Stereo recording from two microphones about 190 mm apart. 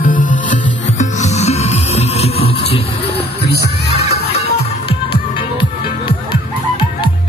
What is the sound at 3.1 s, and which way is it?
Music, 60° left (ahead or behind).